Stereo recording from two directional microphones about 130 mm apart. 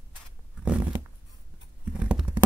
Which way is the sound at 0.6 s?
10° right (ahead or behind).